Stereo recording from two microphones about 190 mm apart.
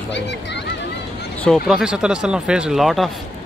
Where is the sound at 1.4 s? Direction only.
Centre (ahead or behind).